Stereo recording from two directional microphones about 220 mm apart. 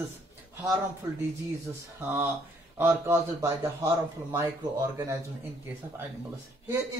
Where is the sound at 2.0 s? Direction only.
10° right (ahead or behind).